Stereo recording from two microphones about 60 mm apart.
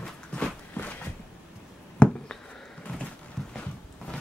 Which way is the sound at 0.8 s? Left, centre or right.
Left.